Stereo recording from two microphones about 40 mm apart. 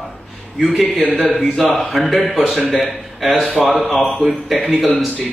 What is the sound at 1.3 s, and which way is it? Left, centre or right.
Speech, centre.